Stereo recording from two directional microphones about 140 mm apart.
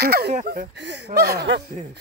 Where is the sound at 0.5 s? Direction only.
70° right (ahead or behind).